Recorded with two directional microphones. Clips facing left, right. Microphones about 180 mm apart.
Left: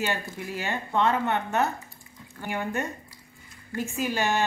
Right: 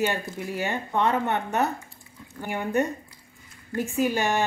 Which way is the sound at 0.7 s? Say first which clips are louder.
Left 1 dB; 15° right (ahead or behind).